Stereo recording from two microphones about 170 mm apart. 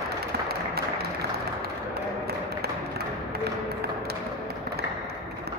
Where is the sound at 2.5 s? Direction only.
65° right (ahead or behind).